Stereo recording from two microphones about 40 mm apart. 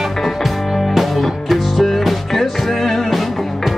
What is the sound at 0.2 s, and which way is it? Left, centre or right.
Music, centre.